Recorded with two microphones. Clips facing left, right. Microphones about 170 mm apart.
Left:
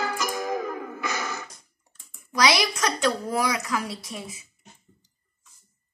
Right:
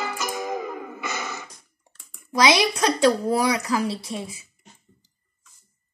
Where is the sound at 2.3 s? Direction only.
25° right (ahead or behind).